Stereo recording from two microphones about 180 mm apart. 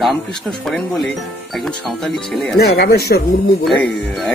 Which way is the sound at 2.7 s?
60° left (ahead or behind).